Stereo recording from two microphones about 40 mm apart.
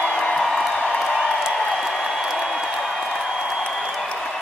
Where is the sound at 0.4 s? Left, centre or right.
Centre.